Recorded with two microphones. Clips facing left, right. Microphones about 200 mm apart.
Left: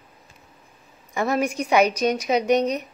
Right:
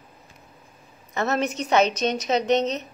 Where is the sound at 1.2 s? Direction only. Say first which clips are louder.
Left 2 dB; 10° left (ahead or behind).